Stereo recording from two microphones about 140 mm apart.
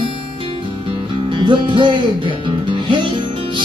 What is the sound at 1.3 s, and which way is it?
Music, 35° right (ahead or behind).